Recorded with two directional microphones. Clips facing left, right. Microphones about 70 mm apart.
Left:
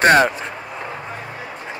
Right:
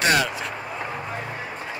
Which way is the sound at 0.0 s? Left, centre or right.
Left.